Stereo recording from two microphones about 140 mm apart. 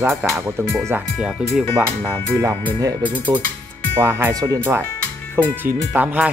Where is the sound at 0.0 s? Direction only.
20° right (ahead or behind).